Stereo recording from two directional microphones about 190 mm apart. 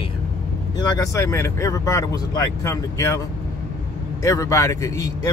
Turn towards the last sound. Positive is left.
turn(degrees=20)  # may be behind; listen again after turning